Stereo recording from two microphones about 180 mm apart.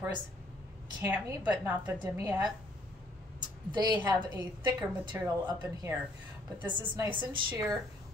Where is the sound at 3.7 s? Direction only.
25° right (ahead or behind).